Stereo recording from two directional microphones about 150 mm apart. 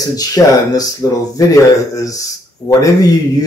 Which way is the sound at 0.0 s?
25° left (ahead or behind).